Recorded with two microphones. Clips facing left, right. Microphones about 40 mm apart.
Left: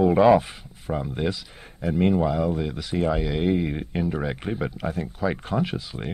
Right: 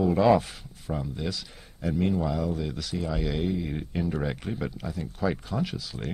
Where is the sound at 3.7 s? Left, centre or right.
Left.